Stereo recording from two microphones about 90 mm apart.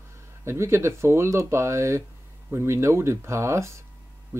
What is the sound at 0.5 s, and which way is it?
Speech, 30° right (ahead or behind).